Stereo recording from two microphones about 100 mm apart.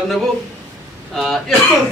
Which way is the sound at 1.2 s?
Centre (ahead or behind).